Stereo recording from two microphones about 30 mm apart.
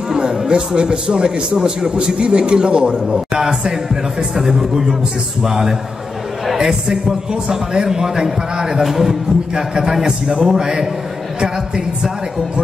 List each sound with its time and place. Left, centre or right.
0.1 s music: right
0.5 s a man's voice: right
3.1 s a man's voice: right
8.8 s a man's voice: centre
9.6 s a man's voice: right